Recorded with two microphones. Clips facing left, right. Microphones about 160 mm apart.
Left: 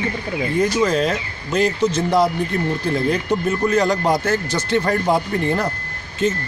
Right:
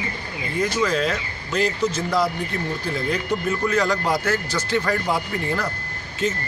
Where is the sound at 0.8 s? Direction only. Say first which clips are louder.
Left 4 dB; 25° left (ahead or behind).